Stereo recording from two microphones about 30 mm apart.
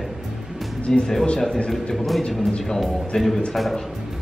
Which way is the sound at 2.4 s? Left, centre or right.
Left.